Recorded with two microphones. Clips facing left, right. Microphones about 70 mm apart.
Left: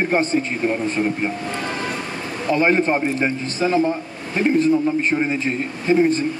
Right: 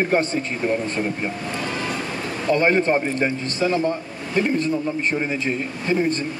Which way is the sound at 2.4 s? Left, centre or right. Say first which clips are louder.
Left 1 dB; centre.